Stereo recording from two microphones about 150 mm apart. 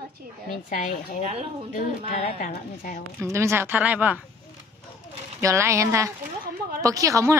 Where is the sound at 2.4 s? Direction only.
65° left (ahead or behind).